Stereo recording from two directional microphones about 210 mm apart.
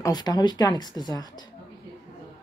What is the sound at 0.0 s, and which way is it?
A woman's voice, 20° left (ahead or behind).